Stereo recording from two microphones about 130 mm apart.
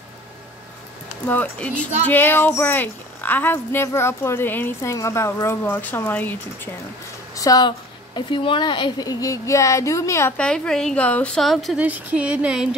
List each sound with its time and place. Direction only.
1.2 s speech: 15° left (ahead or behind)
7.3 s a woman's voice: 30° left (ahead or behind)
10.3 s a woman's voice: 10° left (ahead or behind)
11.8 s speech: 10° right (ahead or behind)